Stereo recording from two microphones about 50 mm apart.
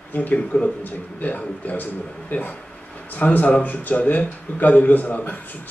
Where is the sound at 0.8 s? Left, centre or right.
Left.